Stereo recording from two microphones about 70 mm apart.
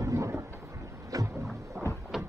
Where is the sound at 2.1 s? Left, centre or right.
Centre.